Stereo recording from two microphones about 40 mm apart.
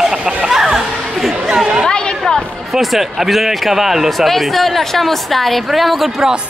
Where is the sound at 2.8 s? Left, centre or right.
Centre.